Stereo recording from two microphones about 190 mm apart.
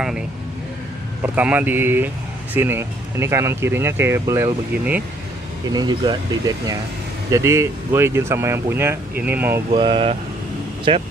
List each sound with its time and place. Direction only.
1.2 s speech: 10° right (ahead or behind)
5.7 s speech: 20° right (ahead or behind)
9.7 s speech: 30° right (ahead or behind)